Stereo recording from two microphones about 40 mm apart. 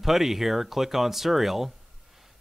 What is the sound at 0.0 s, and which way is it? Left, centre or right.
Speech, centre.